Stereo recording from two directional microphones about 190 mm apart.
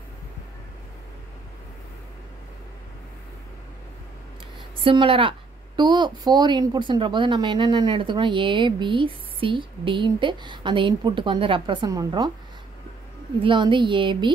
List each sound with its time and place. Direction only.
4.8 s a woman's voice: 25° right (ahead or behind)
13.4 s a woman's voice: 25° right (ahead or behind)